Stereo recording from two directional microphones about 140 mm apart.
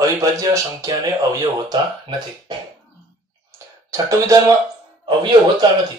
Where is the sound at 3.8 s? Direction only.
20° right (ahead or behind).